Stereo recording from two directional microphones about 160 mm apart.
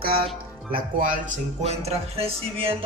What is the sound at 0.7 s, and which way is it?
Speech, 60° right (ahead or behind).